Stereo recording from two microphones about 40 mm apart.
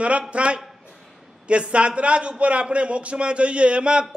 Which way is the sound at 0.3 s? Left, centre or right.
Right.